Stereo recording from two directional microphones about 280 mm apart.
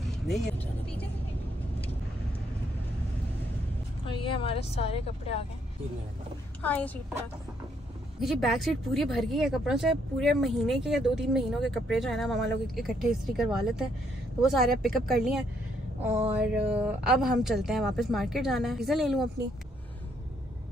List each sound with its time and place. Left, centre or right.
0.0 s vehicle: centre
4.0 s a woman's voice: centre
6.6 s speech: centre
8.2 s speech: centre
16.3 s speech: centre